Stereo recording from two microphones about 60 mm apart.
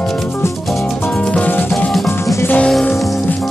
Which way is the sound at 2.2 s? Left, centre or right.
Left.